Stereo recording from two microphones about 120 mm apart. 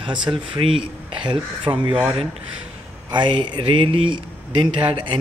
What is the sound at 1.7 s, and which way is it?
Speech, 30° right (ahead or behind).